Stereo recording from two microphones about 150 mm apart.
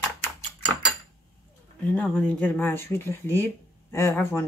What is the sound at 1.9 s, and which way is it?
Speech, 10° left (ahead or behind).